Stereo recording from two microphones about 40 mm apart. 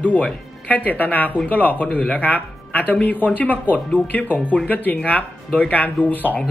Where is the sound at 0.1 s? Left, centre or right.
Left.